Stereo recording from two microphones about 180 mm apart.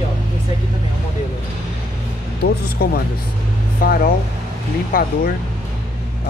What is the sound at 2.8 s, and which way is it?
Speech, 55° left (ahead or behind).